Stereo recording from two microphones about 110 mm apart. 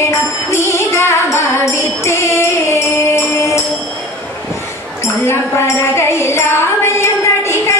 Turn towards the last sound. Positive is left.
turn(degrees=25)  # may be behind; listen again after turning